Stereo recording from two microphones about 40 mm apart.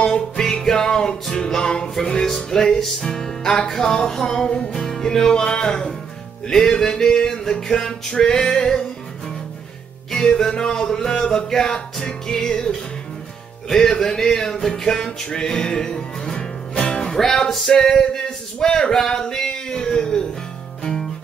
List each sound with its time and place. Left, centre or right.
0.0 s music: centre
4.7 s music: centre
10.1 s music: centre
17.0 s music: centre
20.8 s guitar: centre